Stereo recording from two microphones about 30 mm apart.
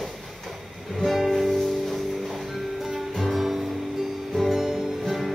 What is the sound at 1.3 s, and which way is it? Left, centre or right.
Music, centre.